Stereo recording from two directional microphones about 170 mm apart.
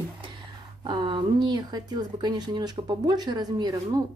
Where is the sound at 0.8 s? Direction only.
30° right (ahead or behind).